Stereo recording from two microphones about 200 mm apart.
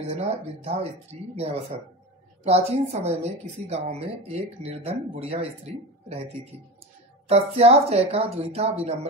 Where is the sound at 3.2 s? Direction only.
30° right (ahead or behind).